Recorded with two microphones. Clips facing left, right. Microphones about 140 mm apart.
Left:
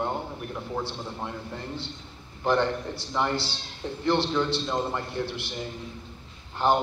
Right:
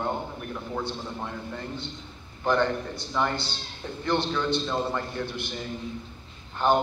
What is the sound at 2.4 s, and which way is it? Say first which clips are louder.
A man's voice: even; 30° left (ahead or behind).